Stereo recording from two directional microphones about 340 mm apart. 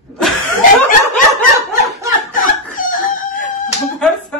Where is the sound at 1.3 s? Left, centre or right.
Centre.